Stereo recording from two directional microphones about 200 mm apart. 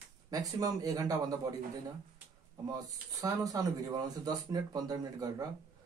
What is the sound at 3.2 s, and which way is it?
Speech, 15° right (ahead or behind).